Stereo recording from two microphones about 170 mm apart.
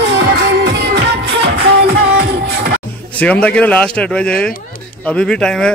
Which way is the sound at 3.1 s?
10° left (ahead or behind).